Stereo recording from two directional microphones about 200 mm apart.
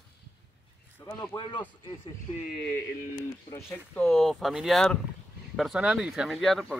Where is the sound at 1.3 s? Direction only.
25° left (ahead or behind).